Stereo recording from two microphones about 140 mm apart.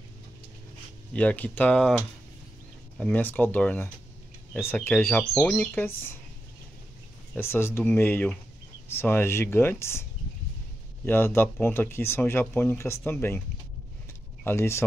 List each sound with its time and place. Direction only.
1.1 s speech: 10° left (ahead or behind)
5.7 s speech: 15° left (ahead or behind)
7.3 s speech: 15° left (ahead or behind)
11.1 s speech: 15° left (ahead or behind)
14.4 s speech: 15° left (ahead or behind)